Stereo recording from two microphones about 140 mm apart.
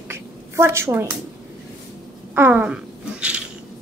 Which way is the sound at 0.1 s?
20° right (ahead or behind).